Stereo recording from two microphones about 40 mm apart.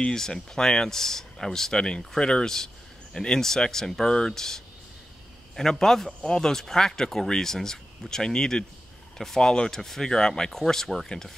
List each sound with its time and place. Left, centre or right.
0.1 s speech: centre